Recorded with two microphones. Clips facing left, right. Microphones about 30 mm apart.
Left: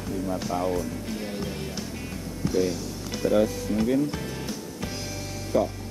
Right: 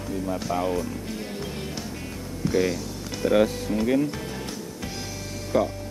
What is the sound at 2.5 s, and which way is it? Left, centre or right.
Speech, right.